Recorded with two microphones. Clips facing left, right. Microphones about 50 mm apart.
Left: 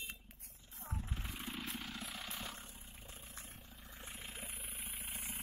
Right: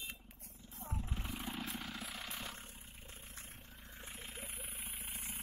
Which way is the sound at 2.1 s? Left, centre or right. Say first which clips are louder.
Even; right.